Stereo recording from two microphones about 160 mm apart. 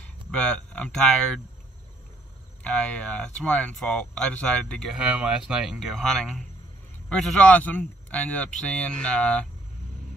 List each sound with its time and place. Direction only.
0.0 s speech: 5° left (ahead or behind)
2.6 s speech: 5° left (ahead or behind)
4.9 s speech: 5° right (ahead or behind)